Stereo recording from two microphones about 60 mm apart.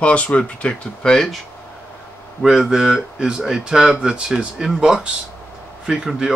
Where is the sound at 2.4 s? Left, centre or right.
Centre.